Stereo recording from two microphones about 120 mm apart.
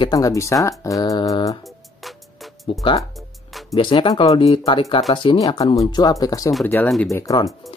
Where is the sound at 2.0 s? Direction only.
Centre (ahead or behind).